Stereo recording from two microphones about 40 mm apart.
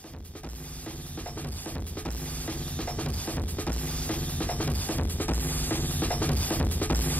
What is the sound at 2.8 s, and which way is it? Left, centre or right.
Music, left.